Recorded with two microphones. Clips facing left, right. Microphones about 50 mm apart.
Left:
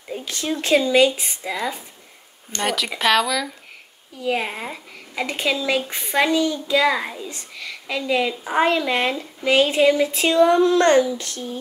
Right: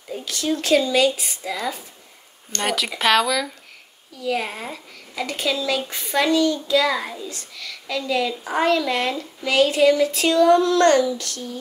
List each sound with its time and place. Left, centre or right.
0.2 s speech: left
2.6 s speech: centre
4.2 s speech: left